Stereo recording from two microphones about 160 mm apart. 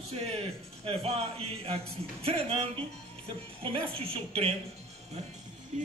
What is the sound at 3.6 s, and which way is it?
Speech, 35° right (ahead or behind).